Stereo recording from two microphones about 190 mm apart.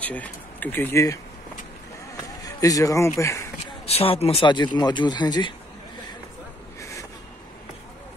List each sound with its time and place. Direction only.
0.0 s speech: 10° left (ahead or behind)
2.4 s speech: 20° left (ahead or behind)
3.8 s speech: 30° left (ahead or behind)
6.8 s train: 15° left (ahead or behind)